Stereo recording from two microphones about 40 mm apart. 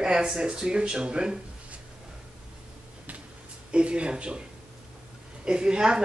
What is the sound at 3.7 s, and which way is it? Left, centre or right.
Speech, right.